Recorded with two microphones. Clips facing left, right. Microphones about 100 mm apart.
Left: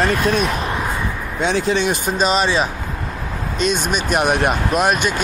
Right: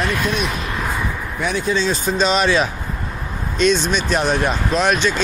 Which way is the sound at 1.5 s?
90° left.